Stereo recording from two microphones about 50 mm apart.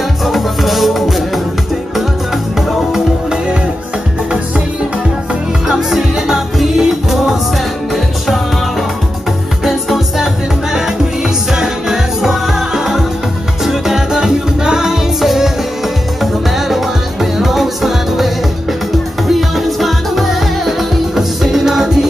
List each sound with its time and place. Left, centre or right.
0.2 s music: centre
2.9 s music: centre
5.3 s music: centre
9.7 s music: centre